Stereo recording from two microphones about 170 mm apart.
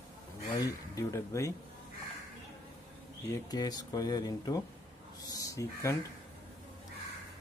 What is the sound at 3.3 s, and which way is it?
Speech, 20° left (ahead or behind).